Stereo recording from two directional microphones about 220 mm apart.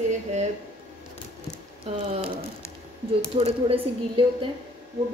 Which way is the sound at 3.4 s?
25° right (ahead or behind).